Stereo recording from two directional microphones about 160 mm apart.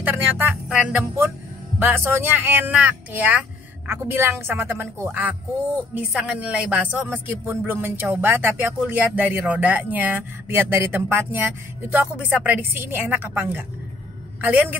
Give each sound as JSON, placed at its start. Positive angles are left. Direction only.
{"t": 0.0, "sound": "a woman's voice", "side_deg": -10}